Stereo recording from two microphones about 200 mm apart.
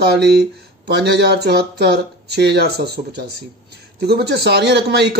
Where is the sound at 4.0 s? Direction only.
55° right (ahead or behind).